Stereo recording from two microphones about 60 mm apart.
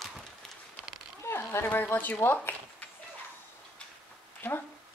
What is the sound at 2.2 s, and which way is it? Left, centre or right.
Speech, left.